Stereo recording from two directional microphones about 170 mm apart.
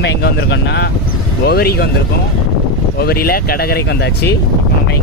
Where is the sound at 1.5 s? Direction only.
70° left (ahead or behind).